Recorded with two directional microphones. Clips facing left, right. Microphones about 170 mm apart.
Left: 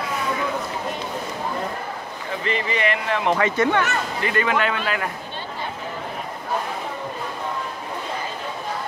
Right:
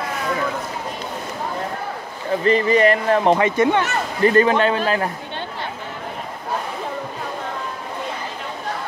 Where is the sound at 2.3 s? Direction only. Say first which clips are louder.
Right 9 dB; 40° right (ahead or behind).